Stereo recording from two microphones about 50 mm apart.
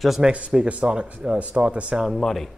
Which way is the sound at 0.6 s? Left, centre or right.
Right.